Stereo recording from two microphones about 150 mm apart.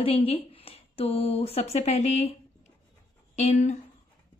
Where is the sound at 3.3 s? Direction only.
50° left (ahead or behind).